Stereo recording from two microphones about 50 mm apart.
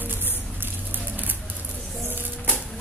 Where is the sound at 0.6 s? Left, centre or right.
Right.